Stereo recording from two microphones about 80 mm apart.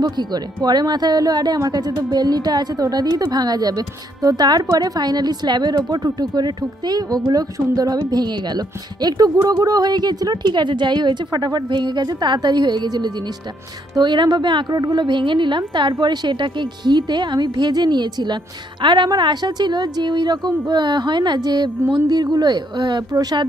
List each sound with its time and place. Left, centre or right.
0.0 s a woman's voice: right
19.0 s speech: right